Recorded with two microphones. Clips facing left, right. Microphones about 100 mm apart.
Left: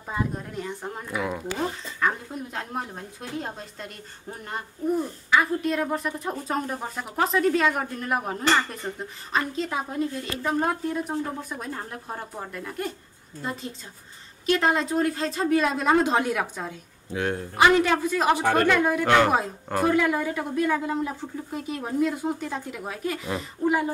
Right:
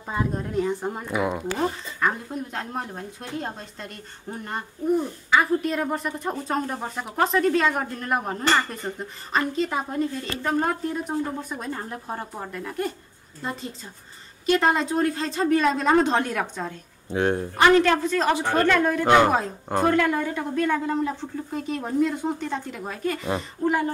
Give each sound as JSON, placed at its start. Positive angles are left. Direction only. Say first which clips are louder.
{"t": 0.1, "sound": "speech", "louder": "right 4 dB", "side_deg": 0}
{"t": 1.0, "sound": "speech", "louder": "right 3 dB", "side_deg": -15}
{"t": 1.6, "sound": "speech", "louder": "right 1 dB", "side_deg": -5}
{"t": 17.1, "sound": "speech", "louder": "right 5 dB", "side_deg": -30}
{"t": 17.6, "sound": "speech", "louder": "right 1 dB", "side_deg": 10}
{"t": 18.3, "sound": "a woman's voice", "louder": "left 2 dB", "side_deg": 50}
{"t": 18.7, "sound": "speech", "louder": "right 1 dB", "side_deg": 10}
{"t": 19.0, "sound": "speech", "louder": "right 3 dB", "side_deg": -15}
{"t": 19.8, "sound": "speech", "louder": "right 1 dB", "side_deg": 5}